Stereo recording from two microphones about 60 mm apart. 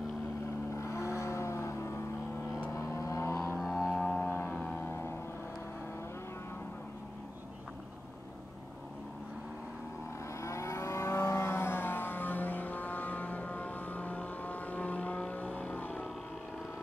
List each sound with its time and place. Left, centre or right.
0.7 s vehicle: left
3.5 s music: centre
4.2 s vehicle: left
4.8 s a sound: left
10.4 s livestock: left